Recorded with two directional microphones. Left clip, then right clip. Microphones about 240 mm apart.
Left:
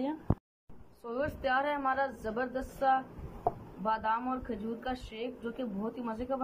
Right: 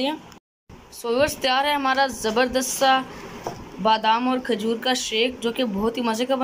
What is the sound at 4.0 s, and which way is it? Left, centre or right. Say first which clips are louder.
Speech: right 12 dB; centre.